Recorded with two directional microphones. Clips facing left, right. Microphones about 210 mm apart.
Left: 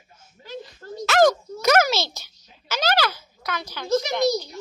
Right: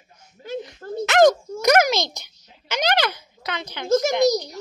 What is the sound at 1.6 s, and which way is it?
A child's voice, 15° right (ahead or behind).